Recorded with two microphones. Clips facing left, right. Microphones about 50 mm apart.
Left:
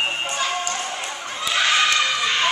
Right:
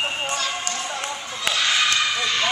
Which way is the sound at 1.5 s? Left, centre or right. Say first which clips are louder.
Left 1 dB; right.